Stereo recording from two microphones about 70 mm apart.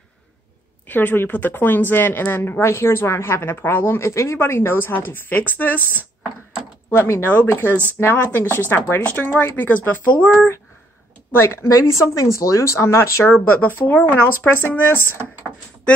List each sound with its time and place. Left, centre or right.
0.8 s a woman's voice: left
7.0 s a woman's voice: left
7.2 s speech: left
8.0 s speech: left
11.3 s speech: left